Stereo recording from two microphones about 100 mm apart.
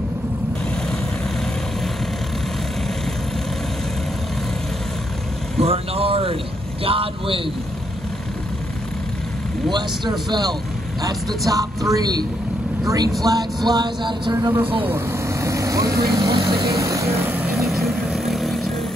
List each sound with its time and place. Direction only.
5.6 s vehicle: 75° right (ahead or behind)
6.8 s speech: 70° right (ahead or behind)
9.7 s a sound: 50° right (ahead or behind)
11.4 s speech: 35° right (ahead or behind)
13.7 s a sound: 45° right (ahead or behind)
14.9 s vehicle: 30° right (ahead or behind)
16.2 s a sound: 55° right (ahead or behind)
16.6 s speech: 35° right (ahead or behind)
17.2 s vehicle: 20° right (ahead or behind)
17.6 s vehicle: centre (ahead or behind)